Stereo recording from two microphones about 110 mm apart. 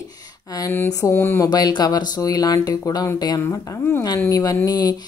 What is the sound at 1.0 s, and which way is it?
Speech, 20° left (ahead or behind).